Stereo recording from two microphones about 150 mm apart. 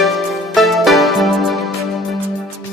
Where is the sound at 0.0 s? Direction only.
Centre (ahead or behind).